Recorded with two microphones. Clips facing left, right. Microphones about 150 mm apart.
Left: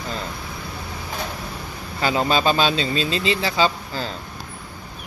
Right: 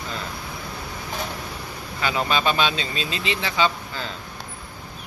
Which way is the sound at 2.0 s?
35° left (ahead or behind).